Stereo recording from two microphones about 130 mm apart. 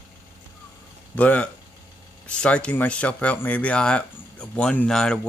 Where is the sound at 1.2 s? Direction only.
10° left (ahead or behind).